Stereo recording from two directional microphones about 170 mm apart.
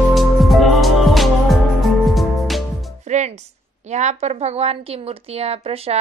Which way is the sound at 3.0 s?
45° right (ahead or behind).